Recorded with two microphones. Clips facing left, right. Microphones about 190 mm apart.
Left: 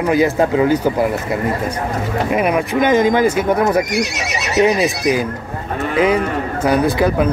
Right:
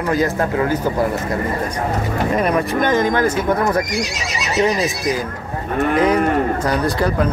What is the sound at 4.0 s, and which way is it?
Speech, 65° left (ahead or behind).